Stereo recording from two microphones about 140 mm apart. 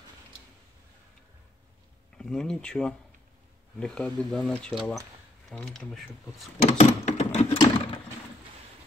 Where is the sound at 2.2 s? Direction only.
5° left (ahead or behind).